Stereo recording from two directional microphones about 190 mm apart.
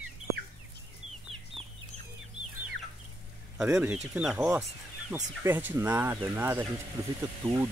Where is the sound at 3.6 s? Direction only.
10° right (ahead or behind).